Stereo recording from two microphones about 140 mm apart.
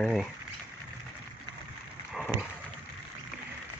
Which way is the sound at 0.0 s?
5° right (ahead or behind).